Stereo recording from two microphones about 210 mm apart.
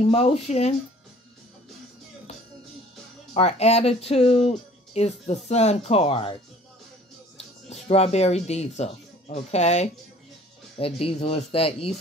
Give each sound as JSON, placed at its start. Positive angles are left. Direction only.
{"t": 0.1, "sound": "speech", "side_deg": 30}
{"t": 3.3, "sound": "speech", "side_deg": 30}
{"t": 7.7, "sound": "speech", "side_deg": 30}